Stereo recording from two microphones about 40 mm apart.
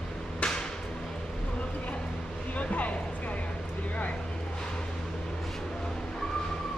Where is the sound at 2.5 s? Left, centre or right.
Left.